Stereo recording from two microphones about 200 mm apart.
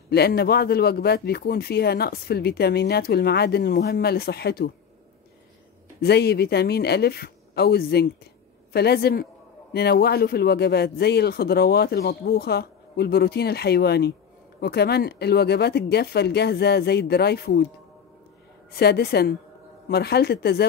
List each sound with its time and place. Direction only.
0.1 s a man's voice: 50° left (ahead or behind)
5.9 s a man's voice: 55° left (ahead or behind)
18.7 s a man's voice: 50° left (ahead or behind)